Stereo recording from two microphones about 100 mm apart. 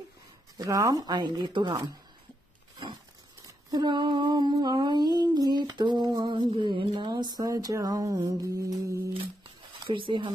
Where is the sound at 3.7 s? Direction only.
45° right (ahead or behind).